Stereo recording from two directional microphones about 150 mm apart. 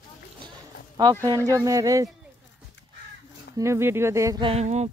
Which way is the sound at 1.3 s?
20° right (ahead or behind).